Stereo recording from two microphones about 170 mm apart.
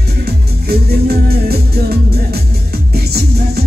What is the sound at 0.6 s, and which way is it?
Music, 65° right (ahead or behind).